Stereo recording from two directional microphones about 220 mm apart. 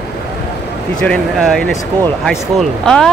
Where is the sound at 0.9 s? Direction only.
5° left (ahead or behind).